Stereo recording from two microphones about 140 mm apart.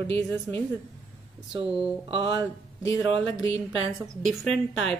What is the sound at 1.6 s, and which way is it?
Speech, 40° right (ahead or behind).